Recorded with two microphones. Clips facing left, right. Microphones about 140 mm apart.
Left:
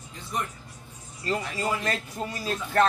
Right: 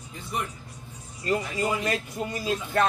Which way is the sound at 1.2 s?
15° right (ahead or behind).